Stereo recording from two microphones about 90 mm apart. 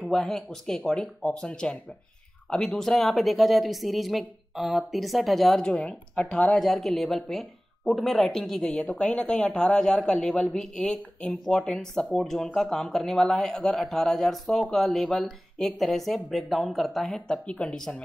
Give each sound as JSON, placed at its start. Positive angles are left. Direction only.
{"t": 0.0, "sound": "speech", "side_deg": 5}
{"t": 5.8, "sound": "speech", "side_deg": 15}
{"t": 6.3, "sound": "speech", "side_deg": 0}